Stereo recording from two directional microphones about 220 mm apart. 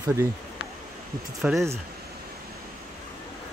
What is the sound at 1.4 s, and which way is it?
Speech, centre (ahead or behind).